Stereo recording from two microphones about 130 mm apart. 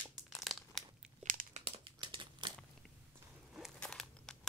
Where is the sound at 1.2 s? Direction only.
80° right.